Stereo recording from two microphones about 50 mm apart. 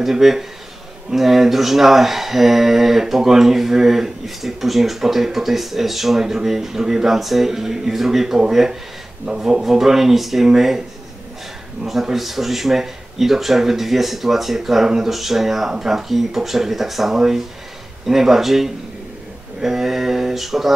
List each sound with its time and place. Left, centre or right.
0.0 s speech: centre
11.8 s speech: centre